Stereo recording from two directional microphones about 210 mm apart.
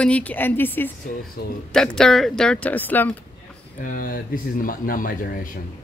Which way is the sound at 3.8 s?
40° left (ahead or behind).